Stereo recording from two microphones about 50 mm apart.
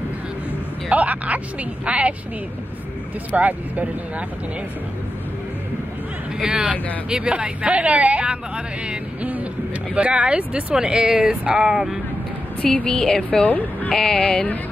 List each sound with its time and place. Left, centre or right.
0.8 s speech: right
3.3 s speech: right
6.4 s speech: right
8.8 s music: right
9.9 s speech: right
12.9 s a woman's voice: centre
13.4 s speech: left
13.9 s a woman's voice: centre